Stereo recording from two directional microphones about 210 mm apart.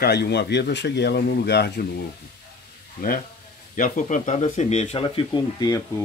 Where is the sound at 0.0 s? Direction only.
50° left (ahead or behind).